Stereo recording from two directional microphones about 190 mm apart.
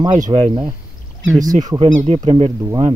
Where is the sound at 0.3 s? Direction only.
30° right (ahead or behind).